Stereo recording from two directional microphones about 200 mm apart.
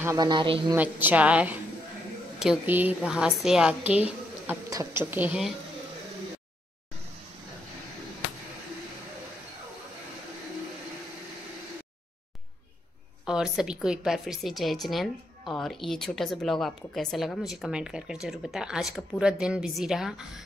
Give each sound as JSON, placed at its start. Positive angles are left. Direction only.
{"t": 0.0, "sound": "a man's voice", "side_deg": -15}
{"t": 0.7, "sound": "a woman's voice", "side_deg": -10}
{"t": 13.2, "sound": "speech", "side_deg": -5}